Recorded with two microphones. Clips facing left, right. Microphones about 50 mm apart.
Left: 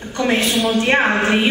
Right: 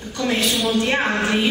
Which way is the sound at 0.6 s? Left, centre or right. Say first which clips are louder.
Left 3 dB; centre.